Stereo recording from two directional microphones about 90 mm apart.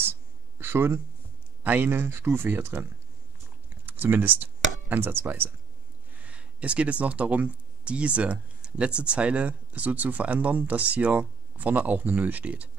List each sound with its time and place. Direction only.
0.0 s a sound: 25° right (ahead or behind)
1.6 s speech: 20° right (ahead or behind)
3.8 s speech: 20° right (ahead or behind)